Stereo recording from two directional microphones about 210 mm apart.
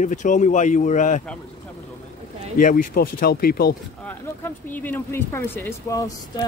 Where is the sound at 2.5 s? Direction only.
40° left (ahead or behind).